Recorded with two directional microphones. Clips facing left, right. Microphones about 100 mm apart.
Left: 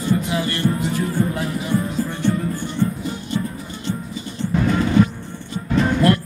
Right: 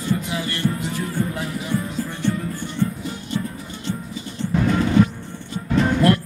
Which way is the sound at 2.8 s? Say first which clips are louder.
Left 2 dB; 30° left (ahead or behind).